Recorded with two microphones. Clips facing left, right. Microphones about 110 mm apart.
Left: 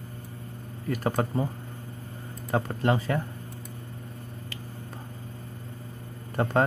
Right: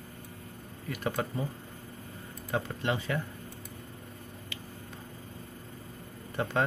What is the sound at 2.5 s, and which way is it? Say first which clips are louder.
Mantra: left 6 dB; 40° left (ahead or behind).